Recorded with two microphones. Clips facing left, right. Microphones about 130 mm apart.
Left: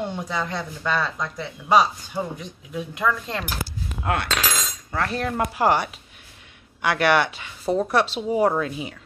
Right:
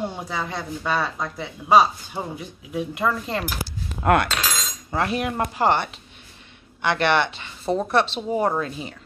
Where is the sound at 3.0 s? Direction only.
30° right (ahead or behind).